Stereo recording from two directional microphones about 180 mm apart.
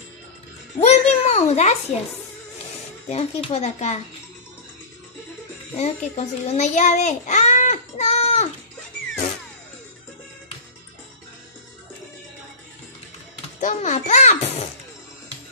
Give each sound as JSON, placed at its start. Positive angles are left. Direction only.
{"t": 0.7, "sound": "a sound", "side_deg": 35}
{"t": 3.1, "sound": "speech", "side_deg": 35}
{"t": 5.8, "sound": "a child's voice", "side_deg": 35}
{"t": 13.6, "sound": "a child's voice", "side_deg": 45}